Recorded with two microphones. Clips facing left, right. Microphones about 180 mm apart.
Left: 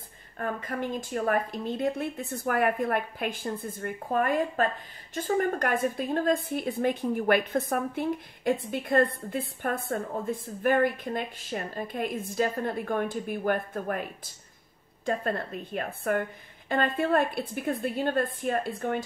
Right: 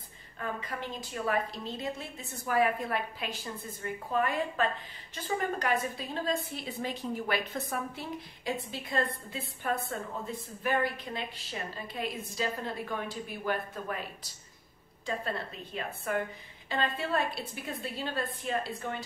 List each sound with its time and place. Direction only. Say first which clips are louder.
0.4 s a woman's voice: left 5 dB; 50° left (ahead or behind)